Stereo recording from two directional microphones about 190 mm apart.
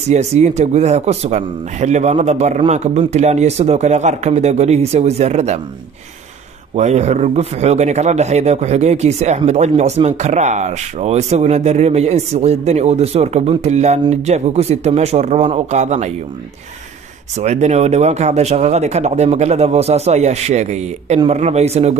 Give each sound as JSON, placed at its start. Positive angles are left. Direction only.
{"t": 0.1, "sound": "speech", "side_deg": -35}
{"t": 6.7, "sound": "speech", "side_deg": -35}
{"t": 17.4, "sound": "speech", "side_deg": -35}